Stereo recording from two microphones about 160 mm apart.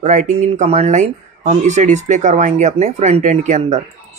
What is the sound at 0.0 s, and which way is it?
Speech, 50° right (ahead or behind).